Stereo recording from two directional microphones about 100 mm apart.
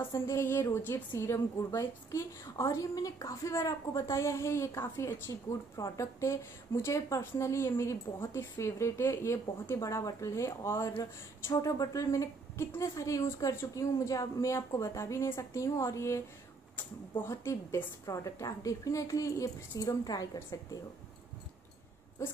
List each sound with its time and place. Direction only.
0.0 s a woman's voice: 25° left (ahead or behind)
17.2 s a woman's voice: 25° left (ahead or behind)